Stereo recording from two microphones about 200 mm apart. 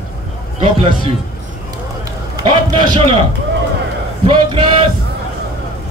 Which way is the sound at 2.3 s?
20° right (ahead or behind).